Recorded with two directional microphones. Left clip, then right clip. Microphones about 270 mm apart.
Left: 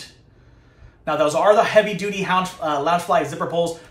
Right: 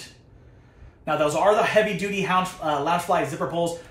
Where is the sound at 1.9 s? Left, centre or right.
Centre.